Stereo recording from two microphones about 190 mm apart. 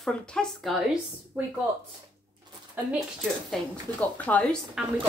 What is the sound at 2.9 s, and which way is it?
Speech, centre (ahead or behind).